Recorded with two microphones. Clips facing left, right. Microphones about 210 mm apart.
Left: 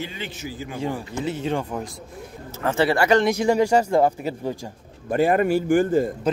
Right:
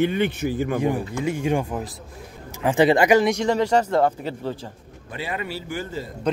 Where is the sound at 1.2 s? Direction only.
15° right (ahead or behind).